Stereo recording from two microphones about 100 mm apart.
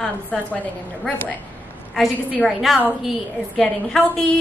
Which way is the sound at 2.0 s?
5° right (ahead or behind).